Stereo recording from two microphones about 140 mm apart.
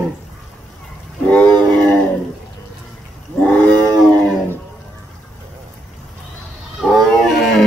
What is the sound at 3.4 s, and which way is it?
Wild animals, 10° left (ahead or behind).